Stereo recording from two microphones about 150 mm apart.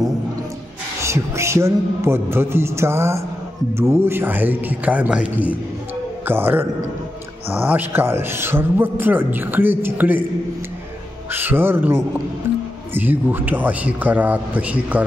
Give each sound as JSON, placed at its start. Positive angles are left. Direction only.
{"t": 1.0, "sound": "a man's voice", "side_deg": -20}
{"t": 11.3, "sound": "a man's voice", "side_deg": -15}
{"t": 12.4, "sound": "music", "side_deg": -15}
{"t": 12.9, "sound": "a man's voice", "side_deg": -15}